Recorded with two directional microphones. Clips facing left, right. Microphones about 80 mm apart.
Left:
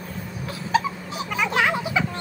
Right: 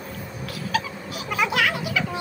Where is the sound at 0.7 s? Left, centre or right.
Left.